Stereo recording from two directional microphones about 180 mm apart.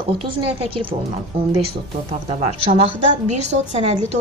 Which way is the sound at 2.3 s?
35° right (ahead or behind).